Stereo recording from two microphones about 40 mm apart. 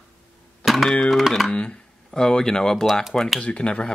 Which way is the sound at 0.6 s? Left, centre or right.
Centre.